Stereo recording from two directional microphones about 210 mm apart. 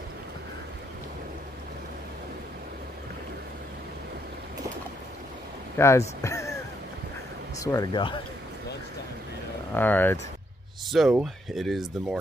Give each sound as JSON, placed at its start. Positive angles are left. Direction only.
{"t": 5.8, "sound": "speech", "side_deg": 15}
{"t": 7.5, "sound": "speech", "side_deg": 15}
{"t": 9.8, "sound": "speech", "side_deg": 10}
{"t": 10.9, "sound": "speech", "side_deg": 0}